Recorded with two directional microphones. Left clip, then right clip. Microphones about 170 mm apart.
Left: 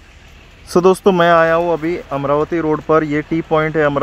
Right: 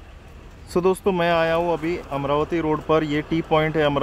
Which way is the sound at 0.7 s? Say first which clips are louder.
Left 9 dB; 50° left (ahead or behind).